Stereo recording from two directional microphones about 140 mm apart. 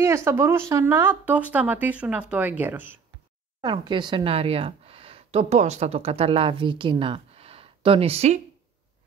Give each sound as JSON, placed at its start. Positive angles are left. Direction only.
{"t": 0.0, "sound": "speech", "side_deg": -20}
{"t": 3.6, "sound": "speech", "side_deg": -35}